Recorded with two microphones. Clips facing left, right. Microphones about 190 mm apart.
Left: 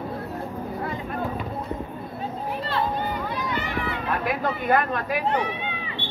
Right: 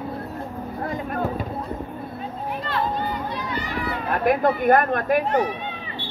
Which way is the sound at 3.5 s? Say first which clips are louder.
Even; 35° right (ahead or behind).